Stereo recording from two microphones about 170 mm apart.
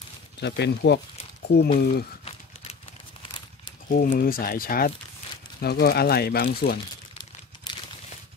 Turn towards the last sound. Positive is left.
turn(degrees=25)  # may be behind; listen again after turning